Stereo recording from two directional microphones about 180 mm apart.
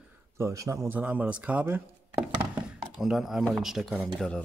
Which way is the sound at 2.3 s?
25° right (ahead or behind).